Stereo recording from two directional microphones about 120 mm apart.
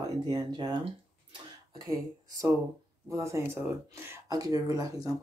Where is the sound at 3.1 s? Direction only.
25° right (ahead or behind).